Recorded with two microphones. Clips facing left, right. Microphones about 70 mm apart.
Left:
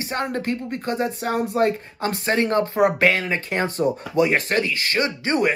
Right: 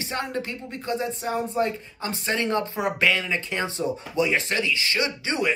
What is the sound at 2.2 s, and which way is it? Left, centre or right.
Speech, left.